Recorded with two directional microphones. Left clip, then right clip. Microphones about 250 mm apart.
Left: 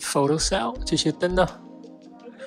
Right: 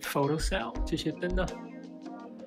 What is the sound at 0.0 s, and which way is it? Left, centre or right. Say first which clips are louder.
Speech: left 7 dB; centre.